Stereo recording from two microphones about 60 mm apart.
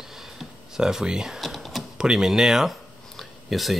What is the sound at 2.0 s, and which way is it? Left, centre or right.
Speech, centre.